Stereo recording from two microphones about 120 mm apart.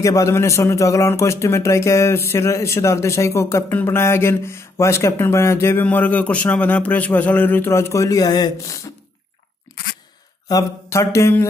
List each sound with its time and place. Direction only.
0.0 s a man's voice: 25° left (ahead or behind)
9.7 s a sound: 35° left (ahead or behind)
10.5 s a man's voice: 25° left (ahead or behind)